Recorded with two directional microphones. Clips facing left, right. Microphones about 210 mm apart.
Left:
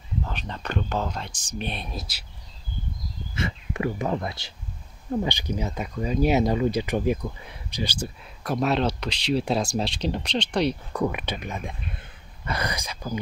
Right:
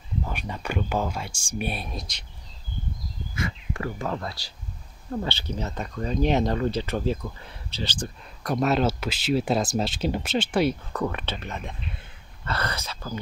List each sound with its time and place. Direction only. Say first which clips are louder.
0.2 s speech: right 2 dB; 10° right (ahead or behind); by 2.2 s 5° left (ahead or behind)
3.3 s speech: left 2 dB; 25° left (ahead or behind); by 10.8 s 5° right (ahead or behind)
10.9 s speech: left 2 dB; 10° left (ahead or behind)